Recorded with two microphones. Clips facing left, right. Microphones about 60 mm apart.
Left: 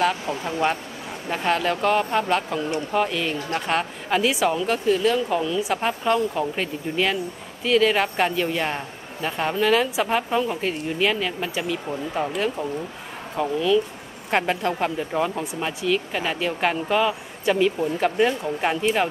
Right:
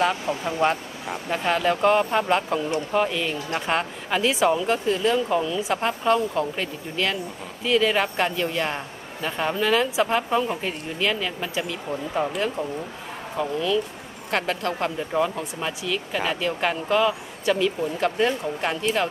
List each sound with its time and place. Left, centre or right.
0.0 s a woman's voice: centre
13.4 s a woman's voice: centre
14.3 s speech: centre